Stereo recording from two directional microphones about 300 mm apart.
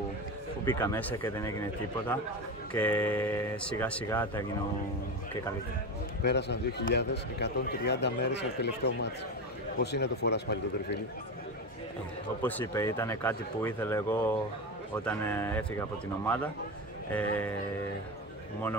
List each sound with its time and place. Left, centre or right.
0.7 s speech: centre
6.2 s a man's voice: left
12.4 s speech: centre